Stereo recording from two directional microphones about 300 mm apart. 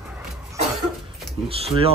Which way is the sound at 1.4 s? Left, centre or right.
Centre.